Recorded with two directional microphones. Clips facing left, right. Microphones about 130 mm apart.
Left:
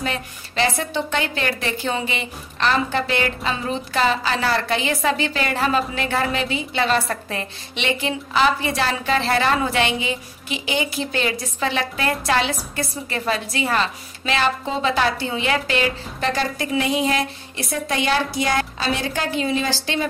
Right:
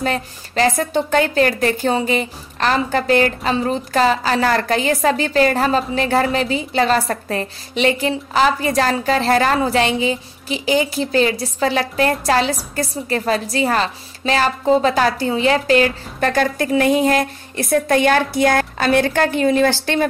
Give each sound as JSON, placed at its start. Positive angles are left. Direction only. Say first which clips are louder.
{"t": 0.0, "sound": "a woman's voice", "louder": "right 5 dB", "side_deg": -40}